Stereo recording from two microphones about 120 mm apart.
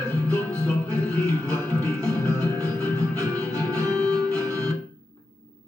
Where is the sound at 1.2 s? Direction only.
25° right (ahead or behind).